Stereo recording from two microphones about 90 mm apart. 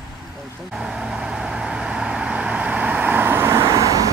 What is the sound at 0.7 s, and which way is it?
Vehicle, 5° right (ahead or behind).